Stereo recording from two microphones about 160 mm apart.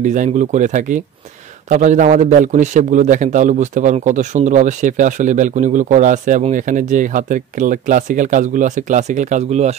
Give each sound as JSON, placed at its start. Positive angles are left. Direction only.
{"t": 0.0, "sound": "a man's voice", "side_deg": -50}